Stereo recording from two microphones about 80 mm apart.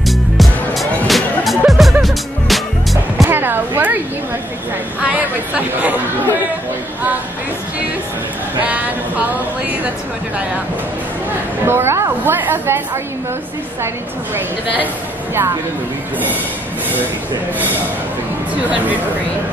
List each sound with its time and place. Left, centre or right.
0.0 s music: centre
3.3 s a sound: right
5.0 s chatter: centre
11.6 s a woman's voice: right